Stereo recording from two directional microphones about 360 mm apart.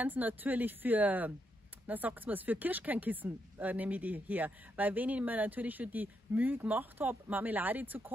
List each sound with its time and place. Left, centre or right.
0.0 s speech: centre